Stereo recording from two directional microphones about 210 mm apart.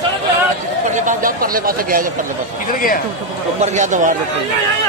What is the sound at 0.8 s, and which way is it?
Speech, 35° right (ahead or behind).